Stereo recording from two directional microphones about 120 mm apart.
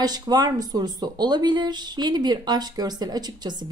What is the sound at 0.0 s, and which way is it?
Speech, 35° right (ahead or behind).